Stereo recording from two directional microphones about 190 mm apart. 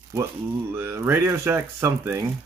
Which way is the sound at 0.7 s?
15° right (ahead or behind).